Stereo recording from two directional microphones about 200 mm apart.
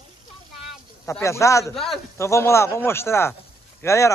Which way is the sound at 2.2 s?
15° left (ahead or behind).